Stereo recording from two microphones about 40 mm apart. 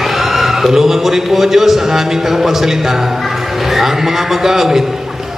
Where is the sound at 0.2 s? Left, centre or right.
Centre.